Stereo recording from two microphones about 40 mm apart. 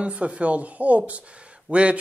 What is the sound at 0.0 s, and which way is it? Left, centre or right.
Speech, right.